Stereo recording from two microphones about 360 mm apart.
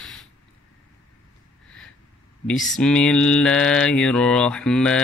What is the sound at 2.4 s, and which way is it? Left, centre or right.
Mantra, centre.